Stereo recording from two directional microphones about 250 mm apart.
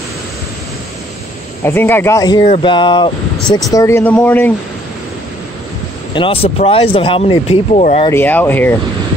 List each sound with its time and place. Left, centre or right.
1.6 s speech: centre
6.1 s speech: left
8.1 s speech: centre